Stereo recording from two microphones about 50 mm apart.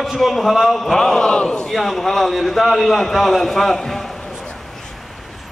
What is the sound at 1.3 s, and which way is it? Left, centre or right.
Speech, centre.